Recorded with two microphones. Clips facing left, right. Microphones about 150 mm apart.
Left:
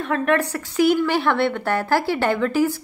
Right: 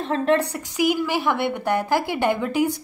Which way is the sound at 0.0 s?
25° right (ahead or behind).